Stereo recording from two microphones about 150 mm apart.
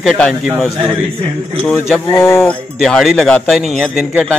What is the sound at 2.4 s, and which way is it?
A man's voice, centre (ahead or behind).